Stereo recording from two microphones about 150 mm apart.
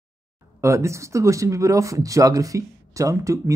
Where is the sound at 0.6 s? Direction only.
20° right (ahead or behind).